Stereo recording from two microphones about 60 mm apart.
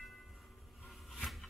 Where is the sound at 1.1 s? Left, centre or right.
Centre.